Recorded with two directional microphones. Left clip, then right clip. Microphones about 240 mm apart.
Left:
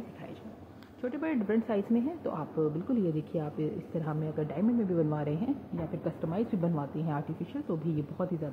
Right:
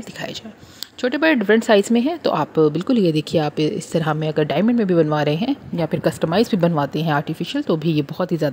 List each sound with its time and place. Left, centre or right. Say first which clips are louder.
1.0 s a woman's voice: right 16 dB; right